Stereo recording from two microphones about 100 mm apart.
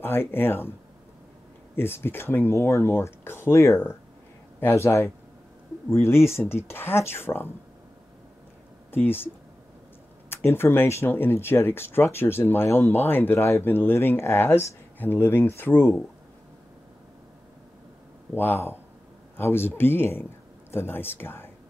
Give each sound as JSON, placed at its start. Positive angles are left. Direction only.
{"t": 0.0, "sound": "speech", "side_deg": 20}
{"t": 1.8, "sound": "speech", "side_deg": 20}
{"t": 8.9, "sound": "speech", "side_deg": 20}
{"t": 10.3, "sound": "speech", "side_deg": 25}
{"t": 18.3, "sound": "speech", "side_deg": 20}